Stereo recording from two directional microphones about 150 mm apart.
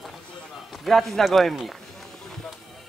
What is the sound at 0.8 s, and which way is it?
Speech, centre (ahead or behind).